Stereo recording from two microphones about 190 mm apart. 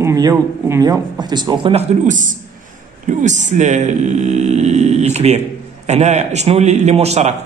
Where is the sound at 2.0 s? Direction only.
40° right (ahead or behind).